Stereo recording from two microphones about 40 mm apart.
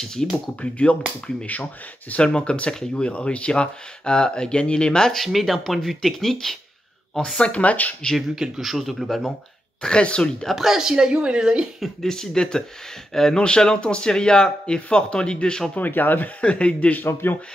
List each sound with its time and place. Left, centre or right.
0.0 s speech: centre
0.6 s speech: left
2.2 s speech: left
5.1 s speech: centre
7.2 s speech: left
8.5 s speech: centre
9.8 s speech: left
10.5 s speech: centre
10.8 s a woman's voice: centre
12.1 s speech: centre
15.7 s speech: left
16.3 s speech: left
17.0 s speech: left